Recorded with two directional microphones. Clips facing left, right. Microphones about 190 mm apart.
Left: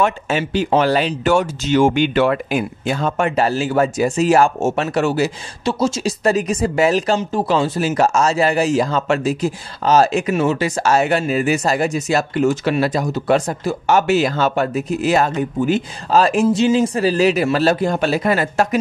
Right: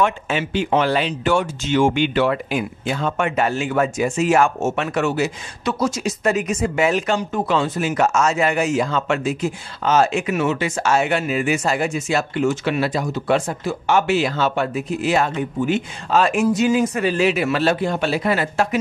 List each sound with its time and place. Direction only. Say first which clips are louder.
0.0 s speech: left 2 dB; 40° left (ahead or behind)
2.8 s speech: left 2 dB; 40° left (ahead or behind)